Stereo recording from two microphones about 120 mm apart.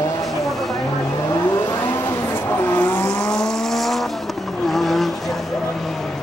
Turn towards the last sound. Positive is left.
turn(degrees=0)  # may be behind; listen again after turning